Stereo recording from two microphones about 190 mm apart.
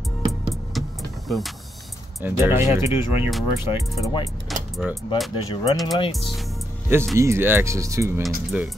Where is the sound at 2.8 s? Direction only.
30° left (ahead or behind).